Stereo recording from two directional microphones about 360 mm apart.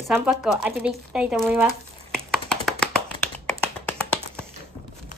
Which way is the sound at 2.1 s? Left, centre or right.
Centre.